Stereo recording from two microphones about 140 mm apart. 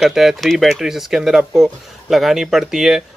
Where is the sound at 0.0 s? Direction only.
Centre (ahead or behind).